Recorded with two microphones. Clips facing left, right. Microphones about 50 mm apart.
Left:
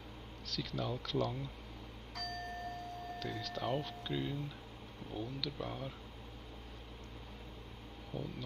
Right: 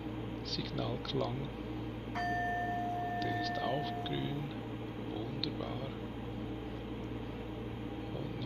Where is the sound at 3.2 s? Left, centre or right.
Centre.